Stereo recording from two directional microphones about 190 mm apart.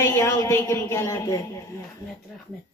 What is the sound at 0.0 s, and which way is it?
Speech, 15° left (ahead or behind).